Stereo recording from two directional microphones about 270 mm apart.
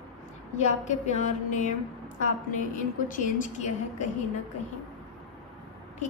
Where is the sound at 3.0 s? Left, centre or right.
Left.